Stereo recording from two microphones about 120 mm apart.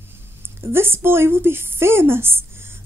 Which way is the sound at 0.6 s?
20° right (ahead or behind).